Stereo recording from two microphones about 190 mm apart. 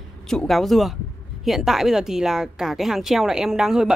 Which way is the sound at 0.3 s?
Centre (ahead or behind).